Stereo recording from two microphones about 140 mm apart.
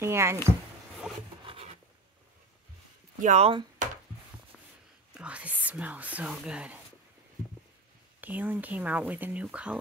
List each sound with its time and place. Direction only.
0.0 s speech: 20° right (ahead or behind)
1.4 s rub: 40° right (ahead or behind)
3.2 s speech: 55° right (ahead or behind)
3.8 s a sound: 65° right (ahead or behind)
5.1 s speech: 10° right (ahead or behind)
8.2 s speech: 10° right (ahead or behind)